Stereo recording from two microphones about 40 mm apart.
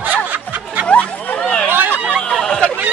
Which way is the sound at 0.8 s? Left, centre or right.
Left.